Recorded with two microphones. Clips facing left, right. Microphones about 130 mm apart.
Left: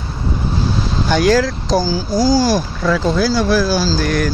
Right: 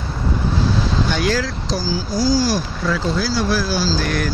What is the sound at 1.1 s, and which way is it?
Speech, 40° left (ahead or behind).